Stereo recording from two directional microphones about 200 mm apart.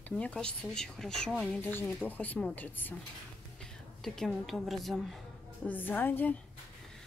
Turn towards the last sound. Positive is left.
turn(degrees=10)  # may be behind; listen again after turning